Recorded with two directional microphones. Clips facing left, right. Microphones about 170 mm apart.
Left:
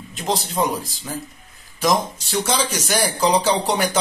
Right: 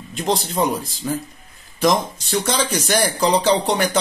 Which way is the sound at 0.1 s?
Centre (ahead or behind).